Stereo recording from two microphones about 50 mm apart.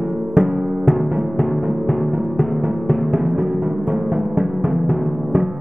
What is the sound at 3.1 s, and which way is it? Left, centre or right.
Music, centre.